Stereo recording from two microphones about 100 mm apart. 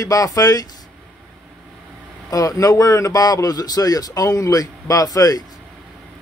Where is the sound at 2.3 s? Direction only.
35° left (ahead or behind).